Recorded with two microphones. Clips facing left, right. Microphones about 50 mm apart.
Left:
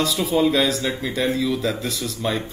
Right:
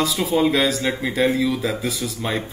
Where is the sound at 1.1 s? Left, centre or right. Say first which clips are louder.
Right 3 dB; centre.